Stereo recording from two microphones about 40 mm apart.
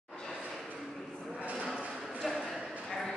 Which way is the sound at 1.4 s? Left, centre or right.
Right.